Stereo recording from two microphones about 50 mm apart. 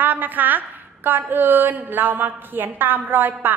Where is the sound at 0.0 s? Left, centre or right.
Right.